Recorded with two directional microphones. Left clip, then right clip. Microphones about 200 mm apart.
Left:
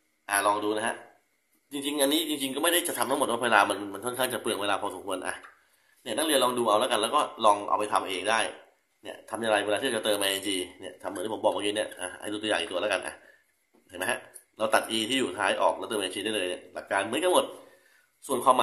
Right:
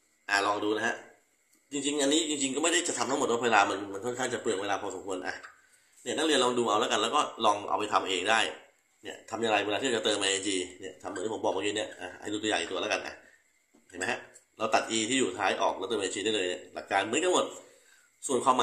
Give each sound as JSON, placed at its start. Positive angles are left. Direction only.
{"t": 0.3, "sound": "a man's voice", "side_deg": 15}